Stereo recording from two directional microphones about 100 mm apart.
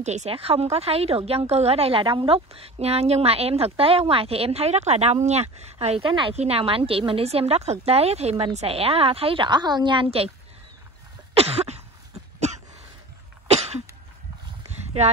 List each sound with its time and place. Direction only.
0.0 s speech: 80° right
6.1 s speech: 75° right (ahead or behind); by 8.5 s 90° right
8.5 s a woman's voice: 75° right (ahead or behind); by 10.0 s 50° right (ahead or behind)
11.3 s cough: 90° right
13.5 s cough: 90° right